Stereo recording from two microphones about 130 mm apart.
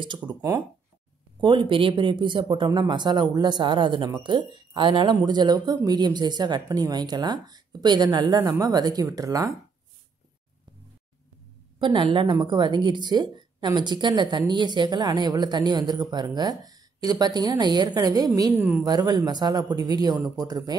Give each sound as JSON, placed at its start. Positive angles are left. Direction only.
{"t": 0.0, "sound": "speech", "side_deg": -35}
{"t": 11.8, "sound": "speech", "side_deg": -40}